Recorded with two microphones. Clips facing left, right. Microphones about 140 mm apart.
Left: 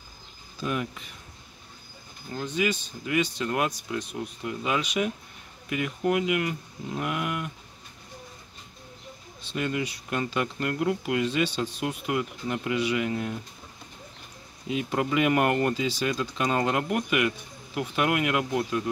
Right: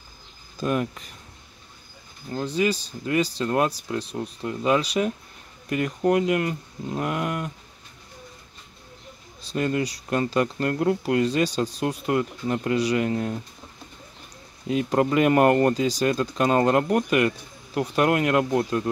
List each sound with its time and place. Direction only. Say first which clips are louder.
0.6 s speech: right 5 dB; 40° right (ahead or behind)
2.3 s speech: right 4 dB; 35° right (ahead or behind)
9.4 s speech: right 5 dB; 40° right (ahead or behind)
14.7 s speech: right 5 dB; 40° right (ahead or behind)